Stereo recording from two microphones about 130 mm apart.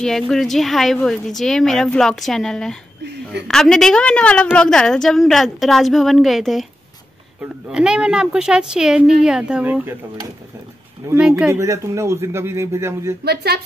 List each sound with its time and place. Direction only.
0.0 s a woman's voice: 5° left (ahead or behind)
7.7 s a woman's voice: 5° right (ahead or behind)
11.1 s a woman's voice: 5° right (ahead or behind)
11.5 s speech: 25° right (ahead or behind)